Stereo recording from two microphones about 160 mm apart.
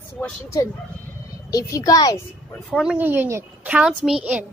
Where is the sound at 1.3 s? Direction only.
20° left (ahead or behind).